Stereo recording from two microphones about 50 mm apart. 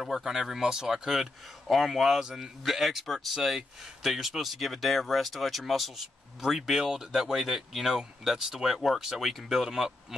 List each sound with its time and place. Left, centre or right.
0.0 s speech: centre